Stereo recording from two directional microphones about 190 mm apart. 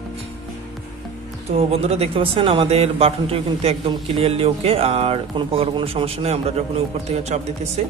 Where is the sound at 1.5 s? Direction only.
35° right (ahead or behind).